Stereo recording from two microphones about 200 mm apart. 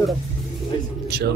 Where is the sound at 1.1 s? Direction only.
55° right (ahead or behind).